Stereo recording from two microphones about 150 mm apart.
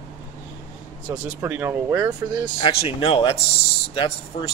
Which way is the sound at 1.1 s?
15° right (ahead or behind).